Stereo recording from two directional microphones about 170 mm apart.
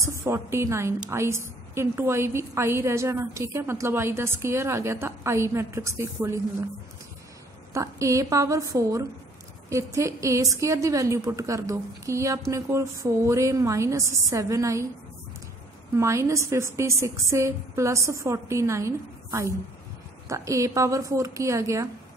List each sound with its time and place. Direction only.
0.0 s a woman's voice: 15° right (ahead or behind)
7.7 s a woman's voice: 20° right (ahead or behind)
16.0 s a woman's voice: 15° right (ahead or behind)